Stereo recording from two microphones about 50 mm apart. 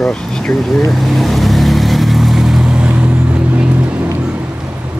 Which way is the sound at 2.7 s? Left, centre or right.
Right.